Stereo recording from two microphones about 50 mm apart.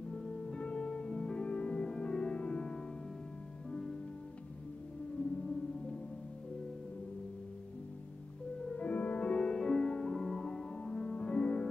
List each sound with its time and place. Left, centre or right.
0.1 s music: centre
8.6 s music: left